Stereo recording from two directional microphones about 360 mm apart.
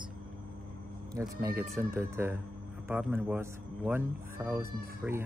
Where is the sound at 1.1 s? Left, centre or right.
Centre.